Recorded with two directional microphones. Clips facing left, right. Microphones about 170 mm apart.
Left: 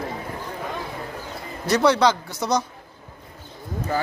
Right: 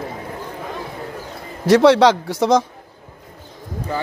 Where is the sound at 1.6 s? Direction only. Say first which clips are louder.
Right 7 dB; 90° right.